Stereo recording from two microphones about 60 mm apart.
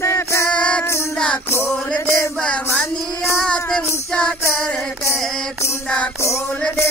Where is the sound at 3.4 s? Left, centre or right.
Centre.